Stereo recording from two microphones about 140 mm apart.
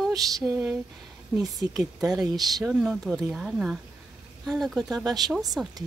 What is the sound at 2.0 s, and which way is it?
A woman's voice, 5° right (ahead or behind).